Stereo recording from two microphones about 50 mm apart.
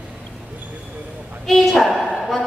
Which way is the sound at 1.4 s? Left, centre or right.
Centre.